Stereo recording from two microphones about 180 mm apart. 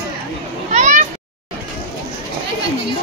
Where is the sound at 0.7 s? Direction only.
40° right (ahead or behind).